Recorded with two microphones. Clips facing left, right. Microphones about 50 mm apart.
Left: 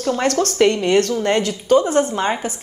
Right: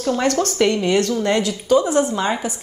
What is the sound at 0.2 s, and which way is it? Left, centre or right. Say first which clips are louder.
Speech: left 1 dB; left.